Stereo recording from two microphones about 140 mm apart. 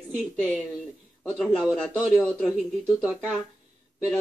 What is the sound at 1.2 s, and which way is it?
A man's voice, 5° left (ahead or behind).